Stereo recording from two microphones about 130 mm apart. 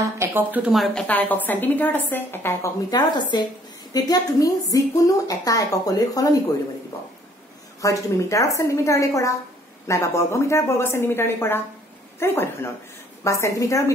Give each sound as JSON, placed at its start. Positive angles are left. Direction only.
{"t": 0.0, "sound": "speech", "side_deg": -20}
{"t": 0.9, "sound": "a woman's voice", "side_deg": 10}
{"t": 2.9, "sound": "a woman's voice", "side_deg": 35}
{"t": 7.8, "sound": "a woman's voice", "side_deg": 25}